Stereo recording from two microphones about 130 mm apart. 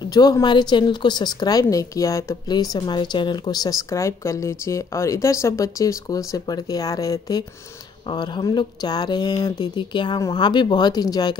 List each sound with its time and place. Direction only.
0.1 s a woman's voice: 30° left (ahead or behind)